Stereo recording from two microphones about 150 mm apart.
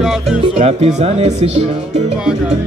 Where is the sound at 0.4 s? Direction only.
45° right (ahead or behind).